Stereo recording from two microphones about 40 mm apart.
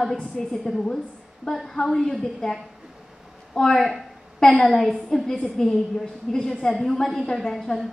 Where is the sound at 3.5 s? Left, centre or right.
Centre.